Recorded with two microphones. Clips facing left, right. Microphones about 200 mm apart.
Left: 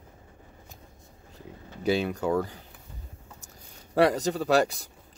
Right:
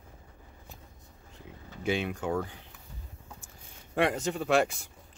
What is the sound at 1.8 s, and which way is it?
Speech, 35° left (ahead or behind).